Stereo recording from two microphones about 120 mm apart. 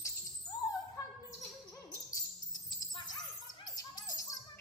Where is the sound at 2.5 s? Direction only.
35° left (ahead or behind).